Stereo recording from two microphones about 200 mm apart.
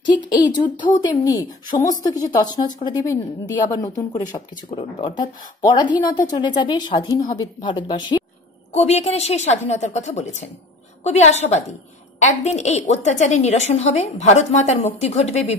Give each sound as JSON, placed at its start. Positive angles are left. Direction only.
{"t": 0.0, "sound": "a woman's voice", "side_deg": 20}
{"t": 8.7, "sound": "a woman's voice", "side_deg": 30}